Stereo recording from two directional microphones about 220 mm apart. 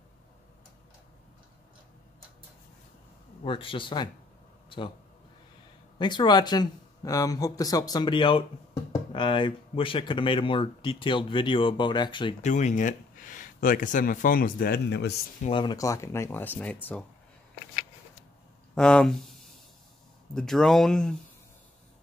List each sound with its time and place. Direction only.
3.4 s speech: 25° left (ahead or behind)
4.6 s a sound: 20° left (ahead or behind)
5.9 s speech: 20° left (ahead or behind)
12.4 s speech: 35° left (ahead or behind); by 15.1 s 50° left (ahead or behind)
15.4 s speech: 20° left (ahead or behind)
18.8 s speech: 5° left (ahead or behind)
20.3 s speech: centre (ahead or behind)